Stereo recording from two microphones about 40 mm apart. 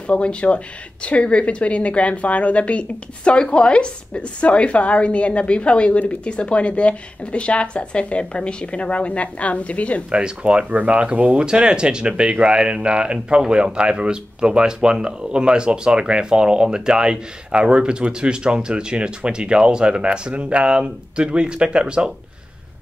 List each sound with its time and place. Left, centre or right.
0.0 s a woman's voice: left
10.1 s speech: right
10.7 s speech: right
11.0 s speech: right